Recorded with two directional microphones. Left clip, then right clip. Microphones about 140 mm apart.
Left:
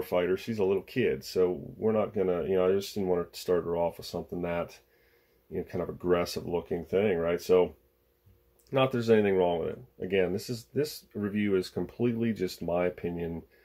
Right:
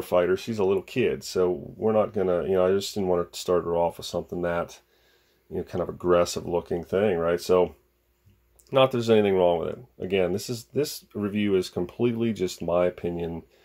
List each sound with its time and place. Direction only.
0.0 s speech: 40° right (ahead or behind)